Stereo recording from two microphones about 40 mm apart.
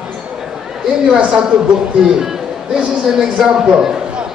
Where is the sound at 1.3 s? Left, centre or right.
Centre.